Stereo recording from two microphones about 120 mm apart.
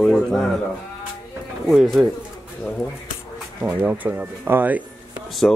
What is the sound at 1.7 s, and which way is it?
Speech, centre (ahead or behind).